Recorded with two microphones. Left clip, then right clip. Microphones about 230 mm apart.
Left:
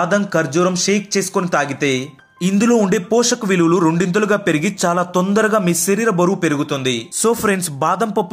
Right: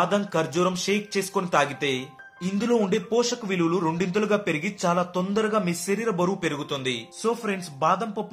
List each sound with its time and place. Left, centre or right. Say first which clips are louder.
0.0 s speech: left 7 dB; centre
7.2 s speech: left 10 dB; left